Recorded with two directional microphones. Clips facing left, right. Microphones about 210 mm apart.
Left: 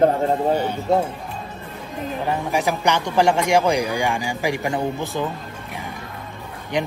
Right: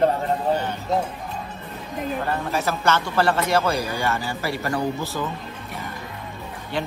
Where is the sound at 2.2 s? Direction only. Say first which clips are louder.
Left 5 dB; 15° left (ahead or behind).